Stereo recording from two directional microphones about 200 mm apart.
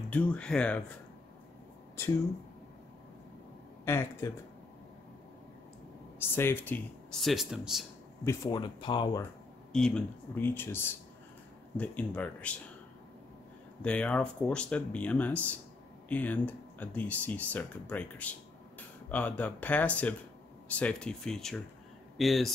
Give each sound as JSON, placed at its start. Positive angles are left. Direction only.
{"t": 0.1, "sound": "speech", "side_deg": 5}
{"t": 3.8, "sound": "speech", "side_deg": 15}
{"t": 6.1, "sound": "speech", "side_deg": 10}
{"t": 8.2, "sound": "speech", "side_deg": 15}
{"t": 9.7, "sound": "speech", "side_deg": 5}
{"t": 13.8, "sound": "speech", "side_deg": 5}